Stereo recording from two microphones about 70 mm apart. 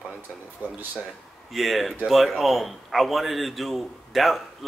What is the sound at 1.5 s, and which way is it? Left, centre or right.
A man's voice, centre.